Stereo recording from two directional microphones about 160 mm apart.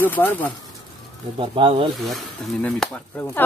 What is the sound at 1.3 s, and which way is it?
Speech, 35° right (ahead or behind).